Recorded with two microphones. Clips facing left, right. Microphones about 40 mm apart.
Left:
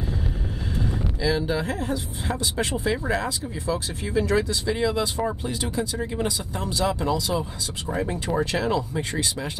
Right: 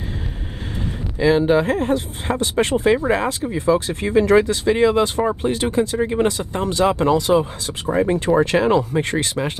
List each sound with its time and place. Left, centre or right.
0.8 s speech: right
3.4 s speech: right